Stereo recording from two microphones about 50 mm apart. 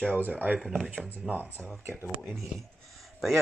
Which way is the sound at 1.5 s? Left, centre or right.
Centre.